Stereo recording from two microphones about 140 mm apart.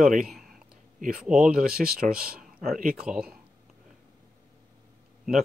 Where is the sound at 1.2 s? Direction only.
5° right (ahead or behind).